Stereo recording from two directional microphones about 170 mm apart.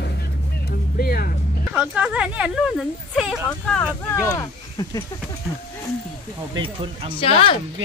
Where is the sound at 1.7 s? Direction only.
5° right (ahead or behind).